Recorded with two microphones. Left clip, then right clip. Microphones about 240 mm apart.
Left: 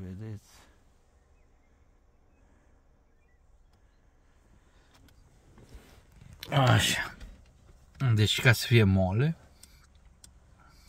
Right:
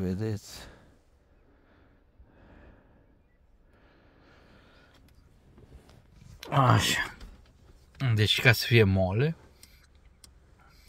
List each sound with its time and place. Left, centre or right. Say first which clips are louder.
0.0 s speech: right 13 dB; right
4.2 s vehicle: right 10 dB; right
6.5 s speech: right 1 dB; centre